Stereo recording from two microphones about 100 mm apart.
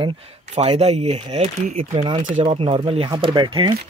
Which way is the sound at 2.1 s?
65° right (ahead or behind).